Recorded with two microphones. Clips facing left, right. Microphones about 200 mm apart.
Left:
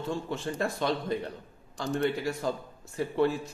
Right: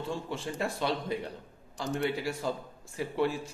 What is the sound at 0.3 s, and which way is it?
Speech, 10° right (ahead or behind).